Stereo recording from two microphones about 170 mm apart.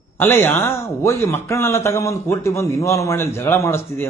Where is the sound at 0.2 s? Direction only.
15° left (ahead or behind).